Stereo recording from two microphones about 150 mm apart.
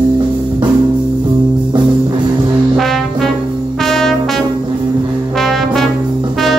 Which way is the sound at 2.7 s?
Centre (ahead or behind).